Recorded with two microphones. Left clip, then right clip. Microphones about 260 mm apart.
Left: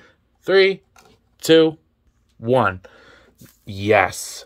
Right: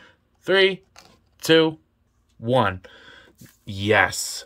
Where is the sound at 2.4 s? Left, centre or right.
Centre.